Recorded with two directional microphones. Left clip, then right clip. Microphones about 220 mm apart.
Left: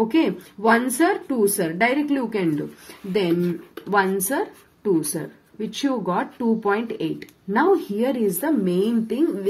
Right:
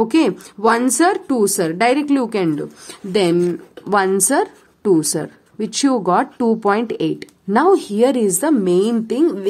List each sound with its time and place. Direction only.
0.1 s a woman's voice: 45° right (ahead or behind)